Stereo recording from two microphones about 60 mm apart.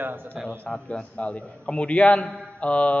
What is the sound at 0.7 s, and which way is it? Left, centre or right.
A man's voice, centre.